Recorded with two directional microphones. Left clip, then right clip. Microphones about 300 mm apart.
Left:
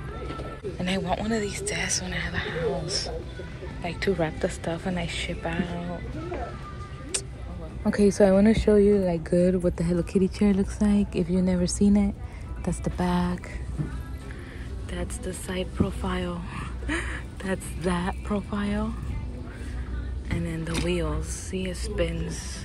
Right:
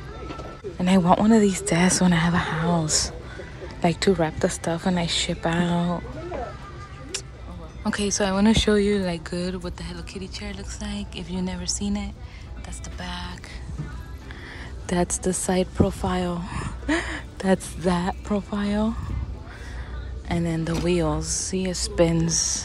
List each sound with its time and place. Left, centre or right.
0.7 s a woman's voice: centre
7.8 s speech: centre
14.9 s a woman's voice: centre
20.2 s a woman's voice: centre